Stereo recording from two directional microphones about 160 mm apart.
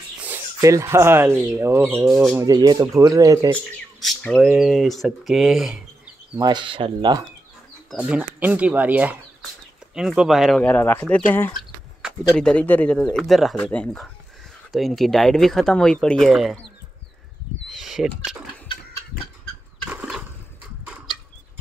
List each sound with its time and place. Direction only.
0.2 s speech: 15° right (ahead or behind)
4.0 s speech: 5° left (ahead or behind)
6.3 s speech: 25° right (ahead or behind)
7.9 s speech: 5° right (ahead or behind); by 11.5 s 10° left (ahead or behind)
11.5 s speech: centre (ahead or behind)
17.6 s a sound: centre (ahead or behind)